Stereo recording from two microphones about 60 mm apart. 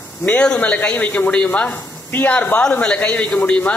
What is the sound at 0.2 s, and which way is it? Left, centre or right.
Speech, left.